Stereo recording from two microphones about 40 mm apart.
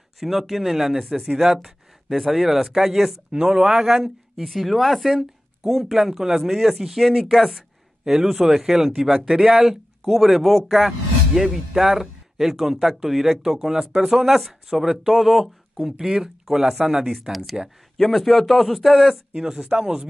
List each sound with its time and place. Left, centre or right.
0.2 s speech: centre
3.3 s speech: centre
8.0 s speech: centre
14.3 s speech: centre
19.7 s speech: right